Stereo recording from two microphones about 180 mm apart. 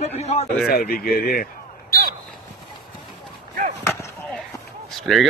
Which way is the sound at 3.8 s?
15° left (ahead or behind).